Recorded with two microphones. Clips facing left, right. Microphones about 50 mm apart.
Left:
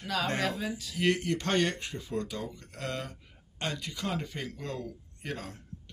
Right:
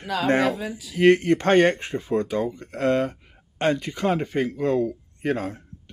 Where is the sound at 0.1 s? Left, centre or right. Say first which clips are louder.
Right 9 dB; centre.